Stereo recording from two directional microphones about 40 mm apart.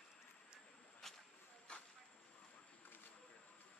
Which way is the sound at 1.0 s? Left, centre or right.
Centre.